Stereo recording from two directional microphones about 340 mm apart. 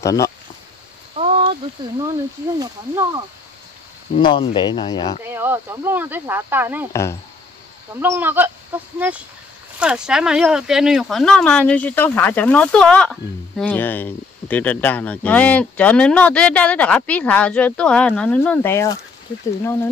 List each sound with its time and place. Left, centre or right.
0.0 s speech: centre
1.2 s a sound: centre
2.6 s speech: centre
4.2 s speech: centre
5.3 s speech: centre
6.9 s speech: centre
7.9 s speech: centre